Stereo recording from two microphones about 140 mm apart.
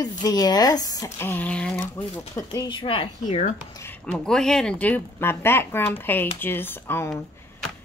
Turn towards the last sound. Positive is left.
turn(degrees=5)  # may be behind; listen again after turning